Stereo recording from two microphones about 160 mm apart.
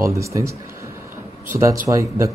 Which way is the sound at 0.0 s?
20° right (ahead or behind).